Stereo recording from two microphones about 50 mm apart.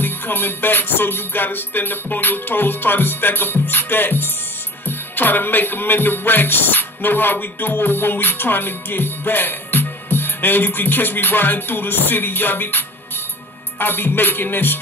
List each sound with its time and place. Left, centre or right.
0.0 s music: left